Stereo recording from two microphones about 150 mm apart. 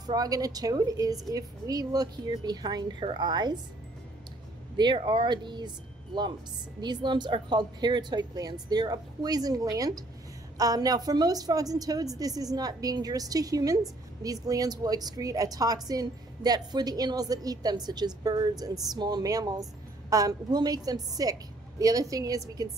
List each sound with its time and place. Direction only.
0.0 s a woman's voice: 25° right (ahead or behind)
4.7 s speech: 30° right (ahead or behind)
6.8 s a woman's voice: 30° right (ahead or behind)